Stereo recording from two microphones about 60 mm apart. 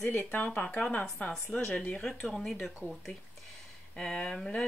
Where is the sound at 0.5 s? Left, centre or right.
Left.